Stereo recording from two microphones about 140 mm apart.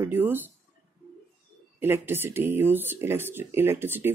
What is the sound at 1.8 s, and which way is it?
Speech, 15° right (ahead or behind).